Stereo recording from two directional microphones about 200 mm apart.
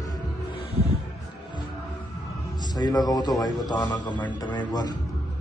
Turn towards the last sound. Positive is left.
turn(degrees=20)  # may be behind; listen again after turning